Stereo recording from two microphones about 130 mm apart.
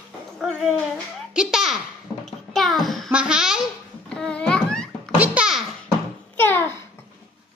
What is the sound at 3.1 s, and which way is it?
Speech, 5° right (ahead or behind).